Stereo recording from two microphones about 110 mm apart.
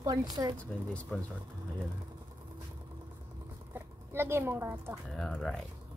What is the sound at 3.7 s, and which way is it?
Speech, 20° right (ahead or behind).